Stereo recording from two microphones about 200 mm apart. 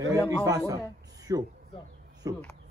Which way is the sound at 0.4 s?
15° right (ahead or behind).